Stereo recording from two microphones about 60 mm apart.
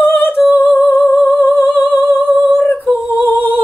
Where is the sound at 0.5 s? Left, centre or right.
Left.